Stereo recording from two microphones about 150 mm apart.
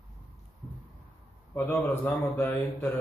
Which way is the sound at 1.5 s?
10° left (ahead or behind).